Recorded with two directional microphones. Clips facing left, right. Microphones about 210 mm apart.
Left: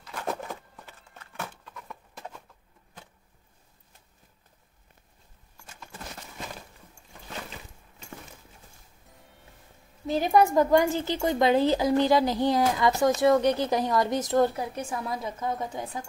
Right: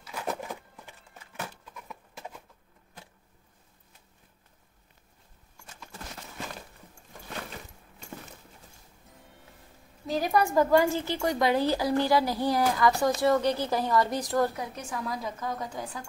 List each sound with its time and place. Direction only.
0.0 s a sound: 10° right (ahead or behind)
9.0 s music: centre (ahead or behind)
10.2 s speech: 20° left (ahead or behind)